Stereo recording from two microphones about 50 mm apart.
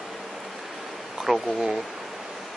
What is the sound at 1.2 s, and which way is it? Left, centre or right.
Speech, centre.